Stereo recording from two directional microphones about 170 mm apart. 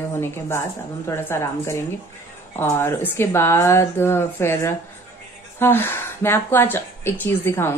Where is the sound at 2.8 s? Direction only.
15° left (ahead or behind).